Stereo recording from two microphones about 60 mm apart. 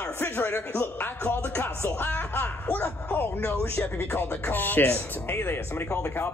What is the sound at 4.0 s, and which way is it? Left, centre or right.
Speech, left.